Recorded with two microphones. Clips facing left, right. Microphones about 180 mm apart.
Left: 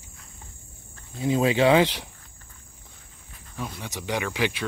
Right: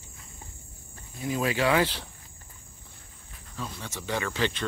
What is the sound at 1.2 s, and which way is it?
Speech, 25° left (ahead or behind).